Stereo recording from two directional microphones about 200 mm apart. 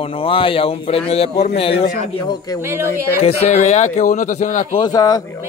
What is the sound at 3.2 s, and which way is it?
Speech, 30° left (ahead or behind).